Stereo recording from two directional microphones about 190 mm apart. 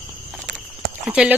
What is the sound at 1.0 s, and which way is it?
Clip-clop, 5° right (ahead or behind).